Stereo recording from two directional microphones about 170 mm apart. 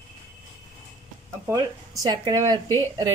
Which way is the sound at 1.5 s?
20° right (ahead or behind).